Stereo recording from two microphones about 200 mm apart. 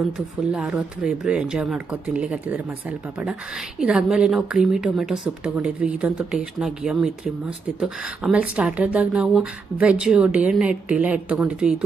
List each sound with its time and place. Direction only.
0.5 s speech: 5° right (ahead or behind)